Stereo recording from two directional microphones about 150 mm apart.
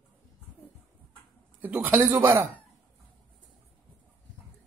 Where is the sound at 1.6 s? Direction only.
10° right (ahead or behind).